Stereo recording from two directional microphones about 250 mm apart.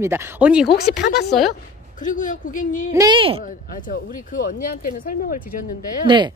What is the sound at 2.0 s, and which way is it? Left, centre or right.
Speech, left.